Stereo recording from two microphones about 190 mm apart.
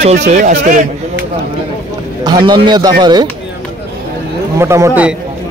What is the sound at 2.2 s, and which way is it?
A man's voice, 20° right (ahead or behind).